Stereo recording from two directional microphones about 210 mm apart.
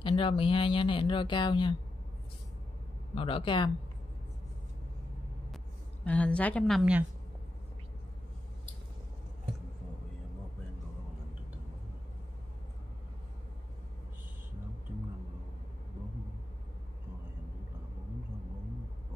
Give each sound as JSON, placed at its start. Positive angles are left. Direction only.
{"t": 0.0, "sound": "speech", "side_deg": 25}
{"t": 3.2, "sound": "speech", "side_deg": 25}
{"t": 6.0, "sound": "a woman's voice", "side_deg": 5}